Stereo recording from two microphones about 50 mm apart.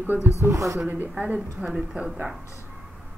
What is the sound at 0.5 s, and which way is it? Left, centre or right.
Speech, right.